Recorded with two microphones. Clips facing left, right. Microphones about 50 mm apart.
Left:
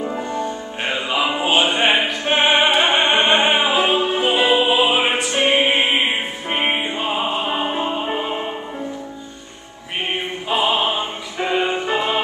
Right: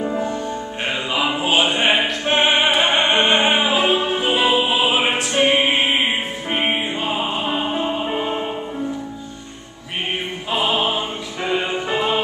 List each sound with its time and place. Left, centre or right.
0.0 s music: centre
10.5 s opera: centre
11.4 s music: centre